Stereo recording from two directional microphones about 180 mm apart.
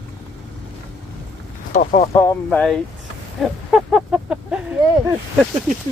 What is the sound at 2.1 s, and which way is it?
Speech, 15° left (ahead or behind).